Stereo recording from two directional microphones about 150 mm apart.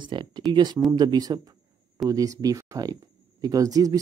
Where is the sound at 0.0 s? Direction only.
30° right (ahead or behind).